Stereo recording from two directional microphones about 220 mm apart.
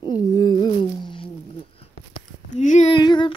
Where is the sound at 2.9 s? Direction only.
20° left (ahead or behind).